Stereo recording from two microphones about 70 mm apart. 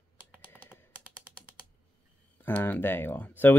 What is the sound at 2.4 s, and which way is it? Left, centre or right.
Speech, left.